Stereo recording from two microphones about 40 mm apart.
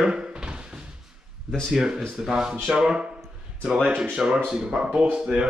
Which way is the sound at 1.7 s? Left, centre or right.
Centre.